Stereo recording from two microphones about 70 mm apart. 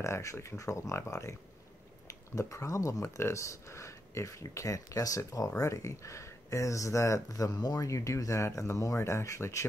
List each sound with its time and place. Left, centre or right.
0.0 s speech: left